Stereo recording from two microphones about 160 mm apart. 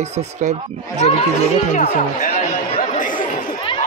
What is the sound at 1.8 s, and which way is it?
Speech, 50° left (ahead or behind).